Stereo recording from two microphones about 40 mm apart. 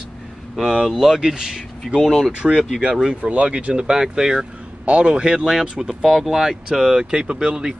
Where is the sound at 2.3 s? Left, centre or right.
Right.